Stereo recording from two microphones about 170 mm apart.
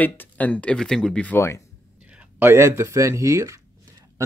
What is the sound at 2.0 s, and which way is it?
Speech, 5° right (ahead or behind).